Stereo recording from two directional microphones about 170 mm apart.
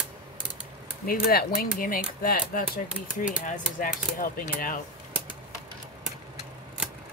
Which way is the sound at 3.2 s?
5° right (ahead or behind).